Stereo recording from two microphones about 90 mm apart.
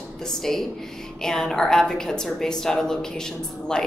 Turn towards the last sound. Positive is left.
turn(degrees=5)  # may be behind; listen again after turning